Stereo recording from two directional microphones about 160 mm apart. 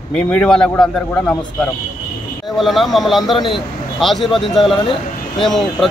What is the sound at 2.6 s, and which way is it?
Speech, centre (ahead or behind).